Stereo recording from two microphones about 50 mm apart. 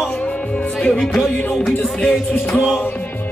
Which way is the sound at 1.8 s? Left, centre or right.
Centre.